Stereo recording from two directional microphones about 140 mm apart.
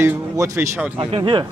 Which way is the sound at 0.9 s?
35° right (ahead or behind).